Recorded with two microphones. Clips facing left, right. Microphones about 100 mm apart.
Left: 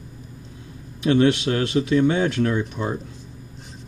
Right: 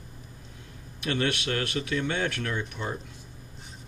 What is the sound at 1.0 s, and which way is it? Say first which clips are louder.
A man's voice: left 11 dB; 20° left (ahead or behind).